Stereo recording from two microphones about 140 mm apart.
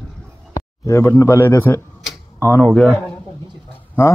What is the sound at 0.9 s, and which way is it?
A man's voice, 20° left (ahead or behind).